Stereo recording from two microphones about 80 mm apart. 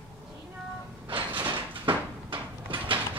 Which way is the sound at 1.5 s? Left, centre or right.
Right.